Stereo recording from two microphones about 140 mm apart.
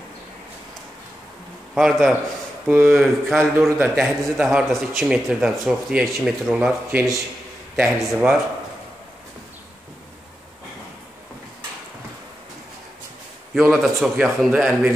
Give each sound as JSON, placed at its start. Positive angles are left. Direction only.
{"t": 1.8, "sound": "speech", "side_deg": 0}
{"t": 2.6, "sound": "speech", "side_deg": -15}
{"t": 3.0, "sound": "speech", "side_deg": 0}
{"t": 3.5, "sound": "speech", "side_deg": -15}
{"t": 3.9, "sound": "speech", "side_deg": 0}
{"t": 13.6, "sound": "speech", "side_deg": -5}